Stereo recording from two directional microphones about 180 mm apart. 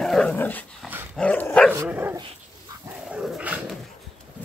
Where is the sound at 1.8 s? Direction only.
10° right (ahead or behind).